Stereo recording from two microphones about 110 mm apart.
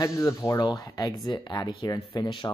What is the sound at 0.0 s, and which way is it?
Speech, 30° left (ahead or behind).